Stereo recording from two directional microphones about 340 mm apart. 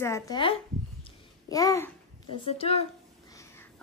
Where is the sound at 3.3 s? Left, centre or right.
Centre.